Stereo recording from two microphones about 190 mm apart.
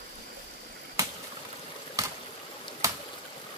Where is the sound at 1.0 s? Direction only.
15° right (ahead or behind).